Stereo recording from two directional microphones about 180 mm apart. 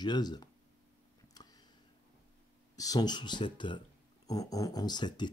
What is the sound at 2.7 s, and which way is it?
Speech, 20° left (ahead or behind).